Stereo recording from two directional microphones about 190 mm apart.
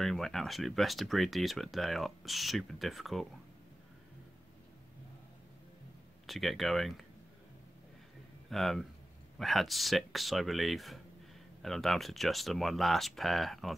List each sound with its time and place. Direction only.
0.0 s speech: centre (ahead or behind)
6.2 s speech: centre (ahead or behind)
8.5 s speech: centre (ahead or behind)